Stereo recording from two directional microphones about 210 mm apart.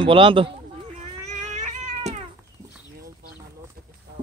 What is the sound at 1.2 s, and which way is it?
Cat, 35° right (ahead or behind).